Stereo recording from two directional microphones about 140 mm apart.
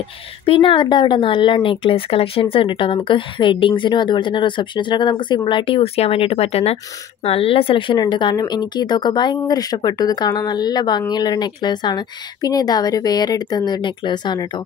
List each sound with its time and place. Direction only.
0.5 s a woman's voice: 40° left (ahead or behind)